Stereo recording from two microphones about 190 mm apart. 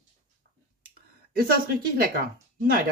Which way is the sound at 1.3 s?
50° right (ahead or behind).